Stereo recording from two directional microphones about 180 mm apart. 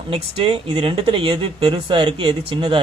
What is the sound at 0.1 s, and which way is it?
Speech, 30° right (ahead or behind).